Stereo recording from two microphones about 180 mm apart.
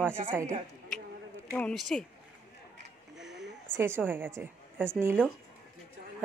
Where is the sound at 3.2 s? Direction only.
Centre (ahead or behind).